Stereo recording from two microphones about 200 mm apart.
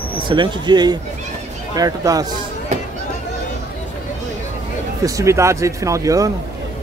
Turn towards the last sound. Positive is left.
turn(degrees=-15)  # may be behind; listen again after turning